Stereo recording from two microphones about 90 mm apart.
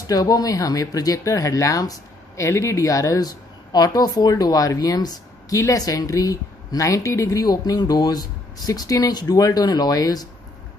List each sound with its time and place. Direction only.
0.0 s speech: 45° left (ahead or behind)